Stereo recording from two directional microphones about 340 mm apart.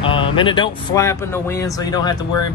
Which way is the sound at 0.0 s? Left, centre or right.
Centre.